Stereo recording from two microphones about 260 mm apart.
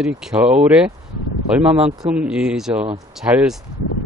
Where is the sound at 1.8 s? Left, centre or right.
Right.